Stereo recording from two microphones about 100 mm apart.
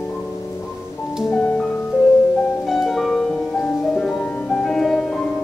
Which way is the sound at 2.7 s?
Centre (ahead or behind).